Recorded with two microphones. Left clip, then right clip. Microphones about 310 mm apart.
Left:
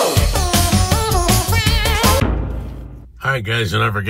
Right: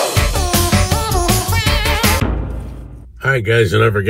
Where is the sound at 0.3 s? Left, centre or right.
Centre.